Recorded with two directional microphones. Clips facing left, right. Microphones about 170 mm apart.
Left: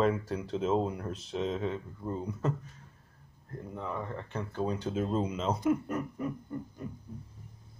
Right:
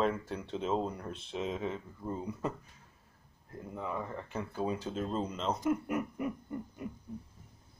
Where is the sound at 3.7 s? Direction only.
5° right (ahead or behind).